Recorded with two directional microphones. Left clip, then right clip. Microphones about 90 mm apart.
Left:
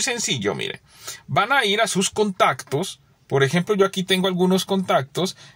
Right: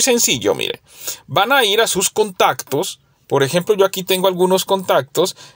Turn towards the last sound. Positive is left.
turn(degrees=-20)  # may be behind; listen again after turning